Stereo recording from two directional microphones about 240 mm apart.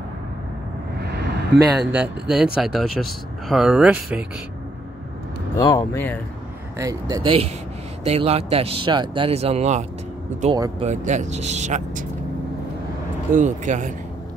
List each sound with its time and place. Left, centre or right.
1.0 s vehicle: right
2.0 s speech: centre
5.6 s speech: centre
6.8 s speech: centre
10.9 s speech: right
13.3 s speech: right